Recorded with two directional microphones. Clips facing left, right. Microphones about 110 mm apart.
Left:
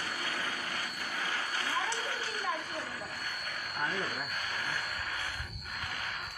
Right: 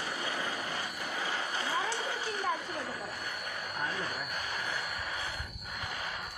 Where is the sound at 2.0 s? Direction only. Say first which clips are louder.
Right 2 dB; 20° right (ahead or behind).